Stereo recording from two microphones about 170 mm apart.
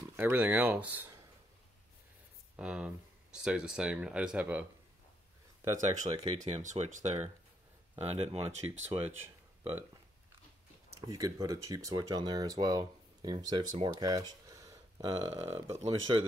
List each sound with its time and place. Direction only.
0.1 s speech: 15° right (ahead or behind)
2.5 s speech: 5° right (ahead or behind)
6.1 s speech: 40° right (ahead or behind)
9.6 s a sound: 15° right (ahead or behind)
11.0 s speech: 20° right (ahead or behind)